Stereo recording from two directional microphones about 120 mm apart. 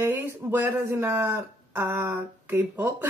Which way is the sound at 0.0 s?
15° right (ahead or behind).